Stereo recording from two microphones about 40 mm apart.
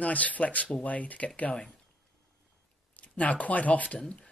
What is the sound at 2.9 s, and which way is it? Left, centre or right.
Speech, left.